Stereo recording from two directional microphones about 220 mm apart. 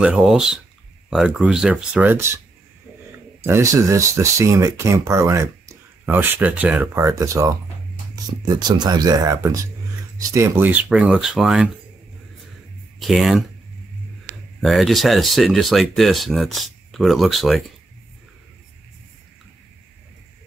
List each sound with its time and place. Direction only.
0.0 s speech: 5° right (ahead or behind)
3.4 s speech: 10° right (ahead or behind)
13.0 s speech: centre (ahead or behind)
14.6 s speech: centre (ahead or behind)